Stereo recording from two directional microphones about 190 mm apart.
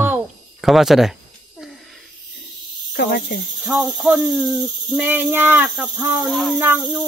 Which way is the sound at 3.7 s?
5° right (ahead or behind).